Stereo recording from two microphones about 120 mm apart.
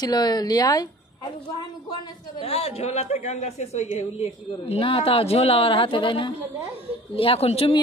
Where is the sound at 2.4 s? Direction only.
55° left (ahead or behind).